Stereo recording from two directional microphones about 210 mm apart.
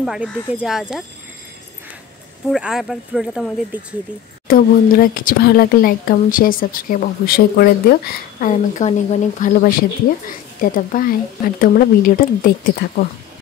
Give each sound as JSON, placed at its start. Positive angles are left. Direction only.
{"t": 0.0, "sound": "speech", "side_deg": 0}
{"t": 2.5, "sound": "speech", "side_deg": 0}
{"t": 4.5, "sound": "speech", "side_deg": 45}